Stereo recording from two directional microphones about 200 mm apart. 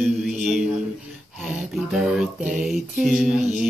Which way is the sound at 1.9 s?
Centre (ahead or behind).